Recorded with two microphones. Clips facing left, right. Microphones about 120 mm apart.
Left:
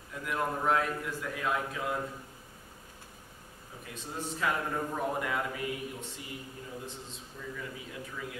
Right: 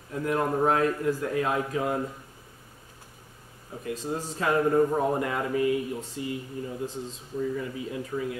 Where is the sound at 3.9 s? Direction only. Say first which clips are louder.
Right 3 dB; 35° right (ahead or behind).